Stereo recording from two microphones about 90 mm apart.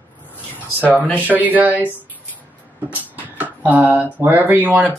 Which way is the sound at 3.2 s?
20° right (ahead or behind).